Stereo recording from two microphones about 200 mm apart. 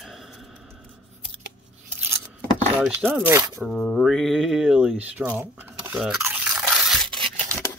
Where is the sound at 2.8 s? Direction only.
10° right (ahead or behind).